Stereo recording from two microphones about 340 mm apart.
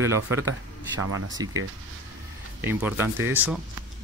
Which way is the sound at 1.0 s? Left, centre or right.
Right.